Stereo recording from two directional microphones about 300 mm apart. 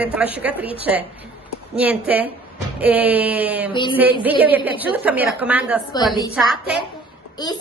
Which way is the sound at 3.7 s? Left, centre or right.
Centre.